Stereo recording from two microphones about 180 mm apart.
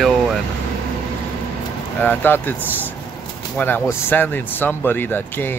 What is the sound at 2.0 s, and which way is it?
Speech, 10° left (ahead or behind).